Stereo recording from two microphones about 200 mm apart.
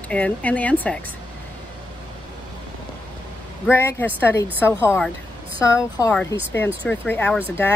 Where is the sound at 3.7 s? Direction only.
10° left (ahead or behind).